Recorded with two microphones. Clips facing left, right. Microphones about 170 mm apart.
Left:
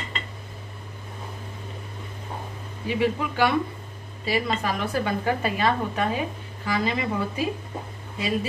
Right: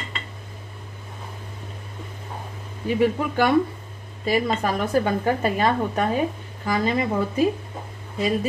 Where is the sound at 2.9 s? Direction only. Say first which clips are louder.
Right 3 dB; 45° right (ahead or behind).